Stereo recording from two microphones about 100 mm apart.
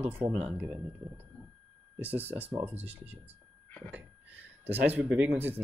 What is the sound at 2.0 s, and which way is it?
Speech, 15° right (ahead or behind).